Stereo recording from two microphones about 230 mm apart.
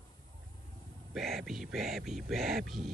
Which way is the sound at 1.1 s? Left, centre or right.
Centre.